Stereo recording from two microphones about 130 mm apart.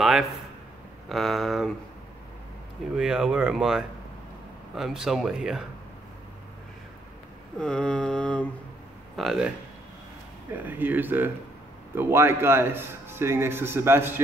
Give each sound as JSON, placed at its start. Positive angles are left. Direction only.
{"t": 0.0, "sound": "speech", "side_deg": 0}
{"t": 3.0, "sound": "speech", "side_deg": -5}
{"t": 7.5, "sound": "mantra", "side_deg": 5}
{"t": 9.1, "sound": "speech", "side_deg": 0}
{"t": 10.6, "sound": "speech", "side_deg": -15}